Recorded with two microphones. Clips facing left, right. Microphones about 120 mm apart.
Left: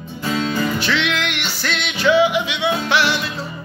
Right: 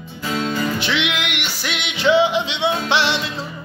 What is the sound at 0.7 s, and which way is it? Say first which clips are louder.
Music: left 1 dB; 20° right (ahead or behind).